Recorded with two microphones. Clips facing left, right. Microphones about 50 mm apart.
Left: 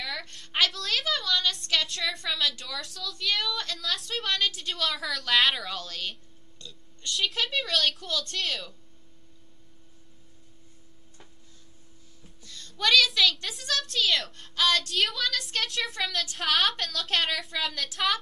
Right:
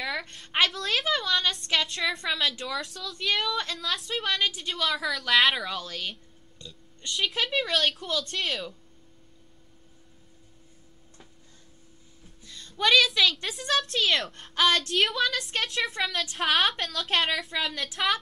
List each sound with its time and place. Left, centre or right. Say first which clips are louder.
0.0 s a woman's voice: right 4 dB; right
6.6 s a sound: even; centre
7.2 s speech: right 3 dB; centre
12.4 s a woman's voice: right 2 dB; centre
13.7 s a woman's voice: right 2 dB; right
15.0 s speech: right 3 dB; centre